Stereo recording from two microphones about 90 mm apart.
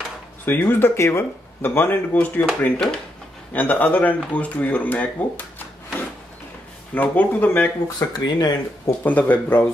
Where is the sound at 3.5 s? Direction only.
20° left (ahead or behind).